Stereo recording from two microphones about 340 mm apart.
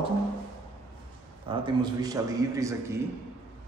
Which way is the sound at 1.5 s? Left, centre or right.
Centre.